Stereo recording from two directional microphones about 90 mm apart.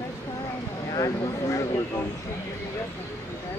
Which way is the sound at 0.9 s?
45° left (ahead or behind).